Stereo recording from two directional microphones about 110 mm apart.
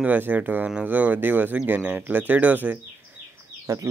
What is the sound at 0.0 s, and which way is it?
Speech, 15° right (ahead or behind).